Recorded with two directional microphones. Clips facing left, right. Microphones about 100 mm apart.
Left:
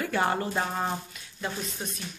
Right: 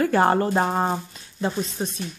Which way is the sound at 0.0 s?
45° right (ahead or behind).